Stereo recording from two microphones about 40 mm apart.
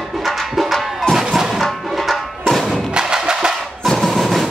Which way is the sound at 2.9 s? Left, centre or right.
Centre.